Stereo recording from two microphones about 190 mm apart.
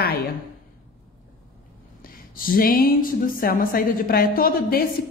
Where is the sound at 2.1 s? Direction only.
50° left (ahead or behind).